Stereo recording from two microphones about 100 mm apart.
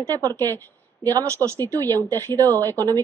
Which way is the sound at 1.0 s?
35° right (ahead or behind).